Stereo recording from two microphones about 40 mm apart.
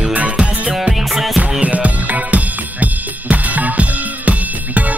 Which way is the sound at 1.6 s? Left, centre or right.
Right.